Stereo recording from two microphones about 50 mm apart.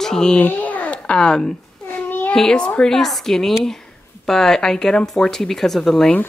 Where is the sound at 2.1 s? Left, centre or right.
Left.